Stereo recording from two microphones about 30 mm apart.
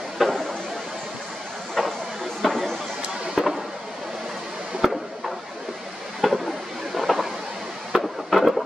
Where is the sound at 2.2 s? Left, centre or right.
Centre.